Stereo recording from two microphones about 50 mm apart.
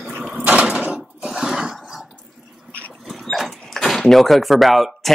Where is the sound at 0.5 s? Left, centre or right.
Right.